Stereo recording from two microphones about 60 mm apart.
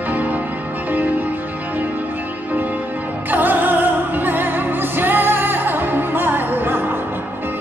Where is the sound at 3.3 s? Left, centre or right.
Right.